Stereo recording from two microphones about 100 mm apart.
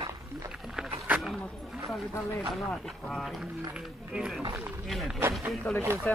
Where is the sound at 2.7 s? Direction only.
5° left (ahead or behind).